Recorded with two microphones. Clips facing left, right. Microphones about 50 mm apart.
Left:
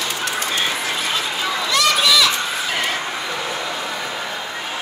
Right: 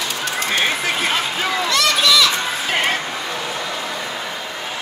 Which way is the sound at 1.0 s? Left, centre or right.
Right.